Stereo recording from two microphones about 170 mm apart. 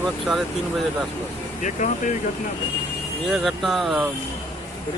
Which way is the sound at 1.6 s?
45° left (ahead or behind).